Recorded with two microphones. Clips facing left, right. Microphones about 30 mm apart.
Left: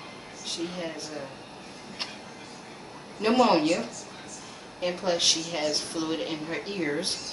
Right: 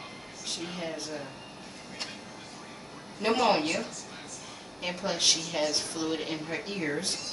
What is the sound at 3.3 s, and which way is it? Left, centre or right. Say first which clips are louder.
Speech: left 3 dB; centre.